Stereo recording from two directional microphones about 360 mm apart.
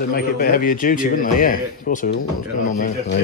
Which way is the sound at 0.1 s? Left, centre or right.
Left.